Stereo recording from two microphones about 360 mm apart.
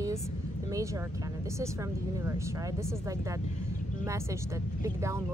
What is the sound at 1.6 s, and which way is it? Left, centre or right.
Speech, centre.